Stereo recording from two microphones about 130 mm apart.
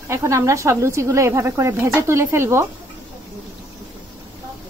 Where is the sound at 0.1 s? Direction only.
20° right (ahead or behind).